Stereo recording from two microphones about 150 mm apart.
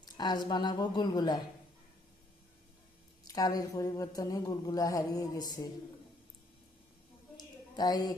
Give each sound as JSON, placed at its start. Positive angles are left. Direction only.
{"t": 0.0, "sound": "speech", "side_deg": 25}
{"t": 3.3, "sound": "speech", "side_deg": 25}
{"t": 7.3, "sound": "a sound", "side_deg": 25}